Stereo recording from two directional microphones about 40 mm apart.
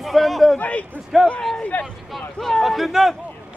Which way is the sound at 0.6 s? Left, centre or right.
Left.